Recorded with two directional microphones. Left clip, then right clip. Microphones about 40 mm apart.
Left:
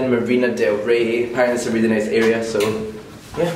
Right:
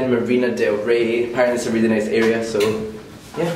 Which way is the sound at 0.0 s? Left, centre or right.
Centre.